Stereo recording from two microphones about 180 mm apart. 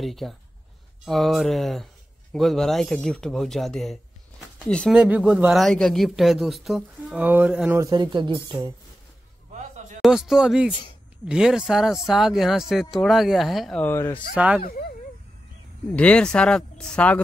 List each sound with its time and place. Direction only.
0.0 s speech: centre (ahead or behind)
4.9 s speech: 5° right (ahead or behind)
7.8 s speech: 25° right (ahead or behind)
10.0 s speech: centre (ahead or behind)
13.8 s speech: 15° left (ahead or behind)
14.3 s speech: 5° right (ahead or behind)
14.6 s speech: 55° left (ahead or behind)
15.9 s speech: 5° left (ahead or behind)